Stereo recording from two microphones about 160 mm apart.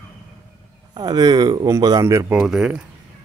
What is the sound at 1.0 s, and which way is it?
Speech, 25° right (ahead or behind).